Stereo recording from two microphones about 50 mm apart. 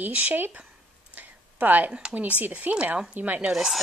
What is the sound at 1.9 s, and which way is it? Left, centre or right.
Speech, centre.